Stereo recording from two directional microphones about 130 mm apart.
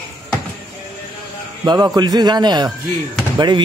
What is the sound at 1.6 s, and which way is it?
A man's voice, 30° right (ahead or behind).